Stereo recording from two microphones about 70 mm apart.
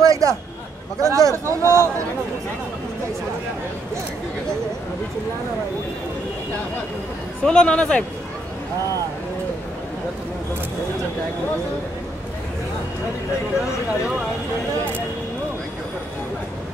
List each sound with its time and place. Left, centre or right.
0.0 s a sound: right
1.0 s speech: right
7.4 s speech: centre